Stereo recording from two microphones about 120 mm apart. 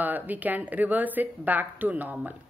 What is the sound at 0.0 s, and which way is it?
A woman's voice, 15° right (ahead or behind).